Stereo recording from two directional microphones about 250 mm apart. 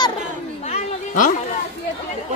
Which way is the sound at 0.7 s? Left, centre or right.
Left.